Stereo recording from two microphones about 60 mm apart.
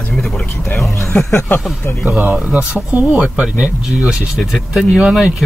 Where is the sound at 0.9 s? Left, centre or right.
Left.